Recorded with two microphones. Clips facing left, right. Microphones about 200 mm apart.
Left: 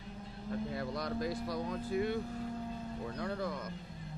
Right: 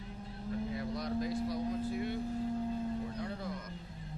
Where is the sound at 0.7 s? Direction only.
70° left (ahead or behind).